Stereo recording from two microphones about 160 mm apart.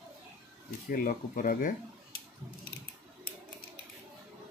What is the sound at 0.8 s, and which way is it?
Speech, 60° left (ahead or behind).